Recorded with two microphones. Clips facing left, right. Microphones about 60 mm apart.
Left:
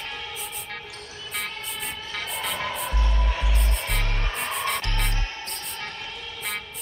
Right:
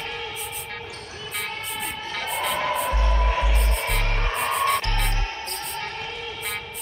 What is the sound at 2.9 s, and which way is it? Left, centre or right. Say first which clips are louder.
Music: right 5 dB; right.